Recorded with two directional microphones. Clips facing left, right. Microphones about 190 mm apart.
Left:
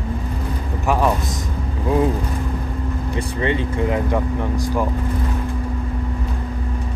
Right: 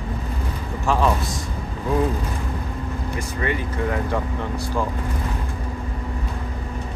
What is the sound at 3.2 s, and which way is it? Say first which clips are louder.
Speech: left 5 dB; 25° left (ahead or behind).